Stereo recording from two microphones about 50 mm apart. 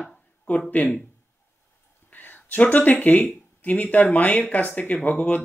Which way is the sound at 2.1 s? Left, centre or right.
Left.